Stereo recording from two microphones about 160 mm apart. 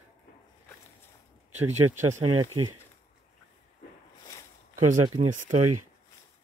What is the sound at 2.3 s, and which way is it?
Speech, 30° right (ahead or behind).